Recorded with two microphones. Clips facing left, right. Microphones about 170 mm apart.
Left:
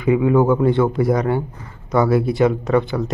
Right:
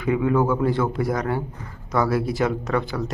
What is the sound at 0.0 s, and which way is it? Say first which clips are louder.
Speech: left 5 dB; 15° left (ahead or behind).